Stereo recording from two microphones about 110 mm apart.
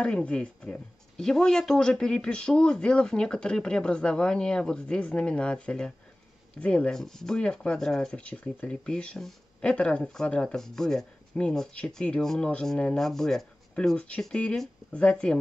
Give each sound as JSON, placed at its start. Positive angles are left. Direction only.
{"t": 0.0, "sound": "speech", "side_deg": 10}